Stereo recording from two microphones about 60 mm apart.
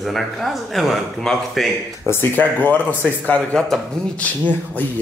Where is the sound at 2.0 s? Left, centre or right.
Left.